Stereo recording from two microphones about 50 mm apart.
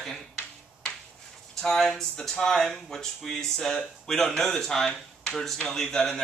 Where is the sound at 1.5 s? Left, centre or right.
Centre.